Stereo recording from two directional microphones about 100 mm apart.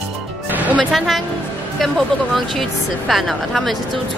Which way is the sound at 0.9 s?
Centre (ahead or behind).